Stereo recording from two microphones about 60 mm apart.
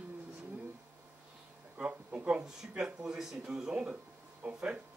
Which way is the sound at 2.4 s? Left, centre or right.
Centre.